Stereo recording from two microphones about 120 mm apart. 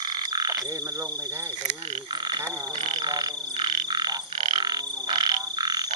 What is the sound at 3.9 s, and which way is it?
Frog, 35° right (ahead or behind).